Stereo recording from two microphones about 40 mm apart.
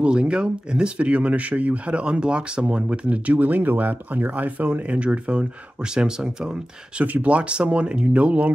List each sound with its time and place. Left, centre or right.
0.0 s speech: right
3.3 s speech: right
4.9 s speech: right
7.0 s speech: right